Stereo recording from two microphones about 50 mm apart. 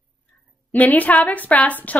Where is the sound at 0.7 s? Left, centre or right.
Left.